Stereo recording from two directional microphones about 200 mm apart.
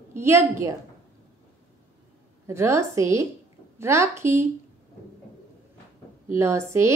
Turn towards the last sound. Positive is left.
turn(degrees=-15)  # may be behind; listen again after turning